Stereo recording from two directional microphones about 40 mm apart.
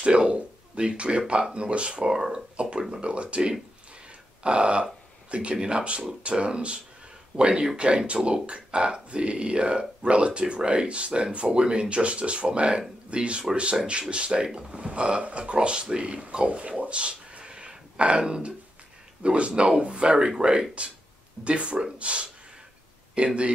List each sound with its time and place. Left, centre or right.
0.0 s speech: right
4.4 s a sound: right
5.3 s speech: right